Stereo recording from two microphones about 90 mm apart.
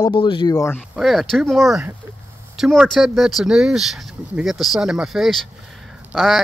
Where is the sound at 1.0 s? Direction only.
Centre (ahead or behind).